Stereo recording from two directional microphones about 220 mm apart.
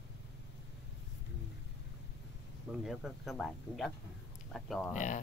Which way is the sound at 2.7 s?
Centre (ahead or behind).